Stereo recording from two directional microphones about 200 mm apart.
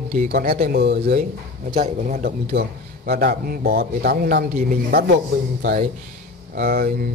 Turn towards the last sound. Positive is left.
turn(degrees=-50)  # may be behind; listen again after turning